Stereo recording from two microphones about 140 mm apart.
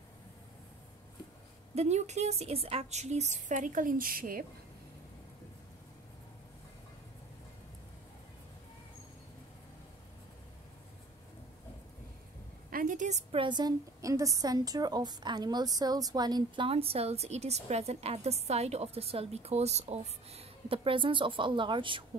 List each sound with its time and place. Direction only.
1.8 s speech: 55° right (ahead or behind); by 4.5 s 90° right
12.6 s a sound: 80° right; by 13.2 s 65° right (ahead or behind)
13.3 s a woman's voice: 35° right (ahead or behind)